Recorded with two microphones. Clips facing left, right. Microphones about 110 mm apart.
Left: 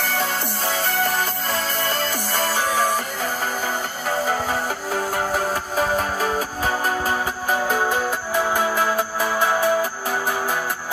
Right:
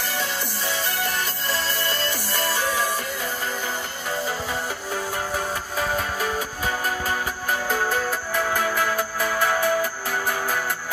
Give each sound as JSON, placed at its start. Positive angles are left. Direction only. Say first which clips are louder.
{"t": 0.0, "sound": "music", "louder": "left 4 dB", "side_deg": 55}
{"t": 5.8, "sound": "music", "louder": "left 4 dB", "side_deg": 35}
{"t": 7.6, "sound": "music", "louder": "left 2 dB", "side_deg": 20}